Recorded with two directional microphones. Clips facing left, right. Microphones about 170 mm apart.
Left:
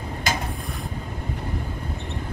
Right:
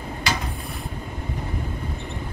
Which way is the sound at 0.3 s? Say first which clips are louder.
Even; 50° left (ahead or behind).